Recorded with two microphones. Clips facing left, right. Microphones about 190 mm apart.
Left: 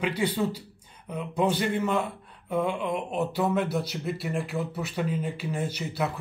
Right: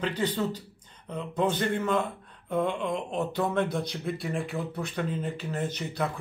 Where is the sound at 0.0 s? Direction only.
10° left (ahead or behind).